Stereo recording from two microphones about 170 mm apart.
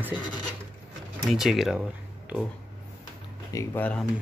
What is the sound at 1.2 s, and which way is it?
Speech, centre (ahead or behind).